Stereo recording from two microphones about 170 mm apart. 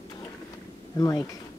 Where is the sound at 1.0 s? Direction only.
20° left (ahead or behind).